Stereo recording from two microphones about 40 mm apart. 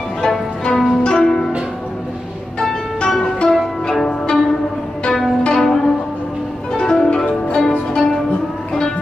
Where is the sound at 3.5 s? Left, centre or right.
Centre.